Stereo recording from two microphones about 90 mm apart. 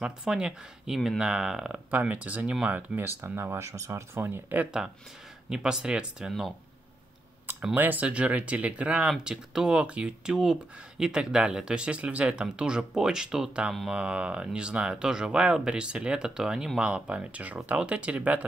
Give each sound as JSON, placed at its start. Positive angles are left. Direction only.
{"t": 0.0, "sound": "speech", "side_deg": -10}
{"t": 3.2, "sound": "speech", "side_deg": -25}
{"t": 5.5, "sound": "speech", "side_deg": -5}
{"t": 7.7, "sound": "speech", "side_deg": -20}